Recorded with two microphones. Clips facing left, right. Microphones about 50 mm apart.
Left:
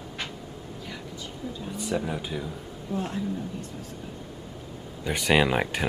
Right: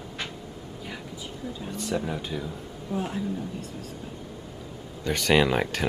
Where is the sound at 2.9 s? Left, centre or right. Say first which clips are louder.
Right 1 dB; centre.